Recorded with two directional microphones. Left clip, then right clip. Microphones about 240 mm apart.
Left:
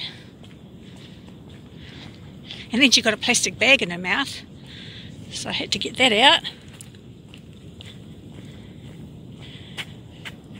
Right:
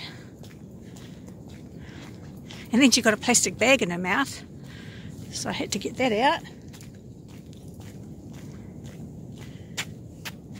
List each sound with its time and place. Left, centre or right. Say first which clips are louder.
2.7 s speech: left 3 dB; centre
5.3 s speech: left 4 dB; centre
5.9 s speech: left 7 dB; centre